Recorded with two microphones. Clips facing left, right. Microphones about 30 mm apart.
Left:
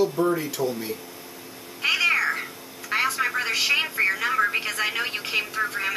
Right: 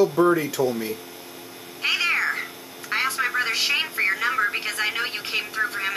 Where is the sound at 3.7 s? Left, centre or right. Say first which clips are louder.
Left 1 dB; centre.